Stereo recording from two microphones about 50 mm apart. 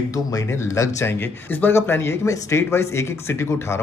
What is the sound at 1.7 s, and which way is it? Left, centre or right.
Speech, left.